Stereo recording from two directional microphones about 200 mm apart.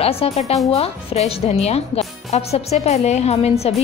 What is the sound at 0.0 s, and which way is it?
A woman's voice, 30° left (ahead or behind).